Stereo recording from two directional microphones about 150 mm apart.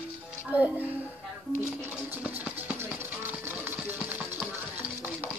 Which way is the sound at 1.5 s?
10° right (ahead or behind).